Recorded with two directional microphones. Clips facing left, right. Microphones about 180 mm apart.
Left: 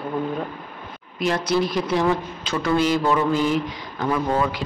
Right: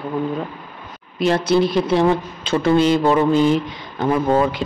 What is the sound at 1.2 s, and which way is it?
Speech, 25° right (ahead or behind).